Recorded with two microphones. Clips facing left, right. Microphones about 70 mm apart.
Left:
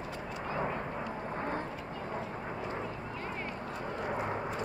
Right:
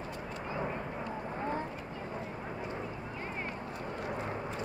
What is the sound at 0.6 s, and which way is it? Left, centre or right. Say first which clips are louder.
Vehicle: left 2 dB; centre.